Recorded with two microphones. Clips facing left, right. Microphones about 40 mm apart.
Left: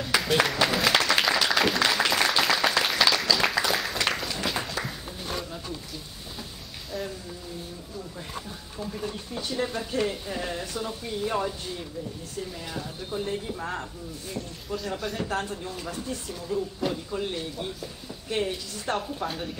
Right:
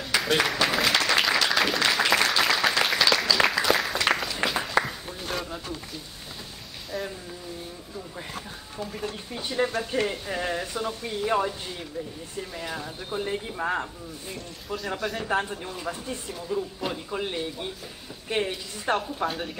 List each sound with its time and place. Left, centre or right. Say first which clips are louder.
0.0 s applause: even; centre
5.3 s a sound: right 2 dB; right
6.9 s speech: right 1 dB; centre
9.3 s speech: right 4 dB; right
15.0 s speech: right 1 dB; centre
15.2 s speech: right 3 dB; right